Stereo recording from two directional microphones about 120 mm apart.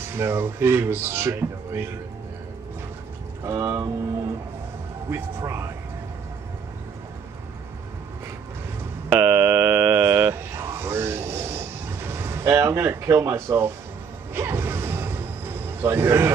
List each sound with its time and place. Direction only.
0.1 s speech: 20° right (ahead or behind)
3.4 s speech: 25° right (ahead or behind)
5.1 s speech: 25° right (ahead or behind)
9.1 s a sound: 15° right (ahead or behind)
14.3 s music: 20° right (ahead or behind)